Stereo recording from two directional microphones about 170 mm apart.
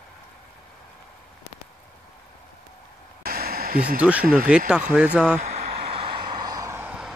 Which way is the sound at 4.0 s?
10° right (ahead or behind).